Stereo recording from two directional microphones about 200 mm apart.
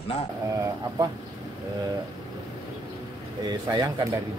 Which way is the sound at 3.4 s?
20° right (ahead or behind).